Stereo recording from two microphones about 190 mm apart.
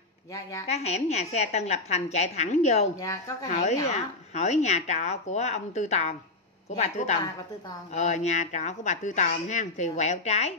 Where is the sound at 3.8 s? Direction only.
35° left (ahead or behind).